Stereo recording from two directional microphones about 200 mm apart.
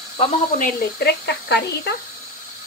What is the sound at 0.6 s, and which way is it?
Speech, 45° left (ahead or behind).